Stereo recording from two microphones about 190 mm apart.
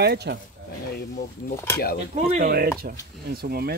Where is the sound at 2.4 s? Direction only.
55° right (ahead or behind).